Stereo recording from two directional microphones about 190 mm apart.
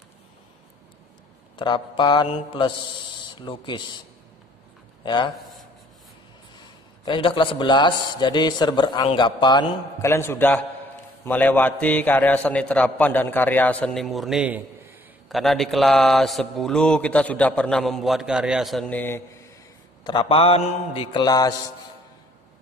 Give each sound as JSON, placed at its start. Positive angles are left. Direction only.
{"t": 1.6, "sound": "a man's voice", "side_deg": 25}
{"t": 5.0, "sound": "a man's voice", "side_deg": 25}
{"t": 7.1, "sound": "a man's voice", "side_deg": 25}
{"t": 20.0, "sound": "a man's voice", "side_deg": 25}